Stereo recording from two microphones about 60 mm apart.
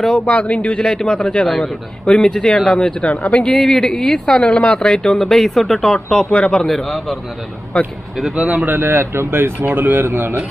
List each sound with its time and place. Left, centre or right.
0.3 s speech: left
6.6 s a man's voice: centre
8.4 s speech: right
8.7 s speech: right
9.7 s a man's voice: right